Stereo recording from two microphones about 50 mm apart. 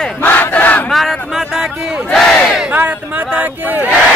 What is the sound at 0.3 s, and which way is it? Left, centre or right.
Battle cry, left.